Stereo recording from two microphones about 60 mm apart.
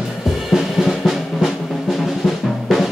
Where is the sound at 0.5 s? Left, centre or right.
Centre.